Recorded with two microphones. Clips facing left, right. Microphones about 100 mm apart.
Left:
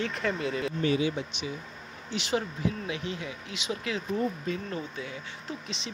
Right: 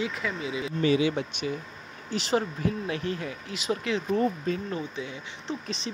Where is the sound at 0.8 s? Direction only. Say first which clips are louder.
Right 4 dB; 85° right.